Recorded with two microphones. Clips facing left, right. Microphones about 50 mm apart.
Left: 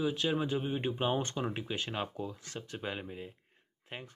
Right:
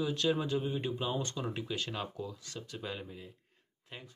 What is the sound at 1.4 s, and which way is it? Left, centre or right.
Speech, left.